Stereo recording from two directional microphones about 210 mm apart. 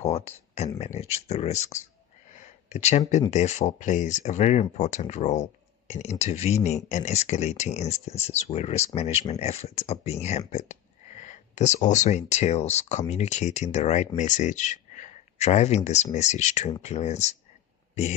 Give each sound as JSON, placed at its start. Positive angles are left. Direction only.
{"t": 0.0, "sound": "speech", "side_deg": 30}